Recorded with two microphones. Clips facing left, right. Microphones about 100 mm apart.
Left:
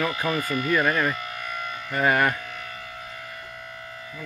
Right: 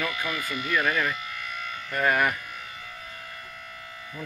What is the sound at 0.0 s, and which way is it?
Speech, 35° left (ahead or behind).